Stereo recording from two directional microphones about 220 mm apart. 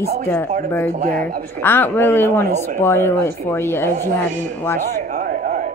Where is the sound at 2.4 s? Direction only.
30° right (ahead or behind).